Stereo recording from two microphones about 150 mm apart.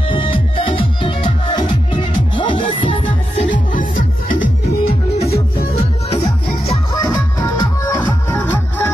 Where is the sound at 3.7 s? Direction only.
65° left (ahead or behind).